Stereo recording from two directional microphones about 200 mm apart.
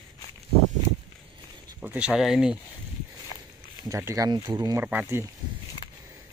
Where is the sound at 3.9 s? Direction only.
15° right (ahead or behind).